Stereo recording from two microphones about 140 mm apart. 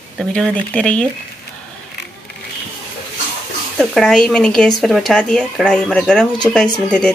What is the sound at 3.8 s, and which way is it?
Speech, centre (ahead or behind).